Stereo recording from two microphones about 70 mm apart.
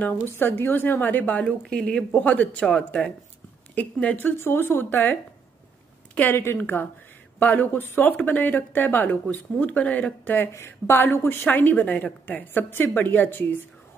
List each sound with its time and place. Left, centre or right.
0.4 s speech: left
1.7 s speech: centre
6.3 s a woman's voice: left